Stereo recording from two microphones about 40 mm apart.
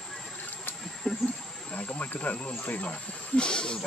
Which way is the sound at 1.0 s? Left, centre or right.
Left.